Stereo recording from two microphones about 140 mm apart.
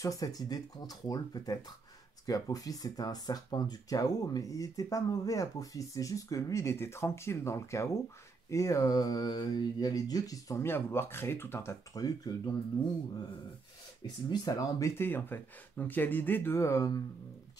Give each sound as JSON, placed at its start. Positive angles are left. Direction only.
{"t": 0.0, "sound": "speech", "side_deg": 25}
{"t": 14.3, "sound": "speech", "side_deg": 30}
{"t": 15.0, "sound": "speech", "side_deg": 15}